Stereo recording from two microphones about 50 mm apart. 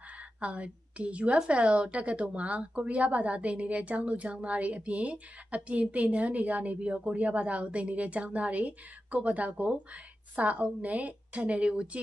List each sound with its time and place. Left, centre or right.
0.4 s a woman's voice: right